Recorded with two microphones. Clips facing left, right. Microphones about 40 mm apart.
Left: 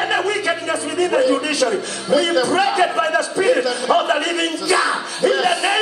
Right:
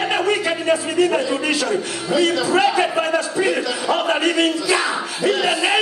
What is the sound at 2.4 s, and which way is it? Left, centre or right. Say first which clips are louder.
Speech: left 1 dB; centre.